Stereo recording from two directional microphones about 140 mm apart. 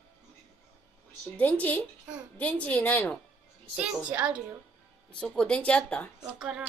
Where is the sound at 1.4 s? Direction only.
10° left (ahead or behind).